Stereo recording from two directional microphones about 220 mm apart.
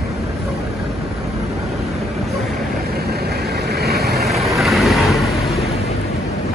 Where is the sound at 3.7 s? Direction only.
45° right (ahead or behind).